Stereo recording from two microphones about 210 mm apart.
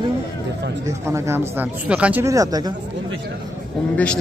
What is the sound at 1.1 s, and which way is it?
Speech, 10° right (ahead or behind).